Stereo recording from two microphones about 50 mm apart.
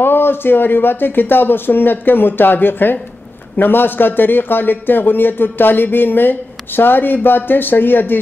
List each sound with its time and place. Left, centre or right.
0.0 s a man's voice: left